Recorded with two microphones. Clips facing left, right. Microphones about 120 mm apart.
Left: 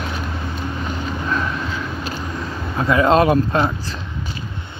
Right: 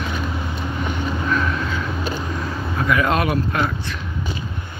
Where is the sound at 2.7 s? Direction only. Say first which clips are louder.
Left 5 dB; 25° left (ahead or behind).